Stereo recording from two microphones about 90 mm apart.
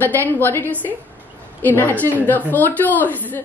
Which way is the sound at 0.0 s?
25° left (ahead or behind).